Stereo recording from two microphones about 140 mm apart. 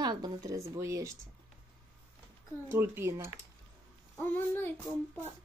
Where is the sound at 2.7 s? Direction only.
15° right (ahead or behind).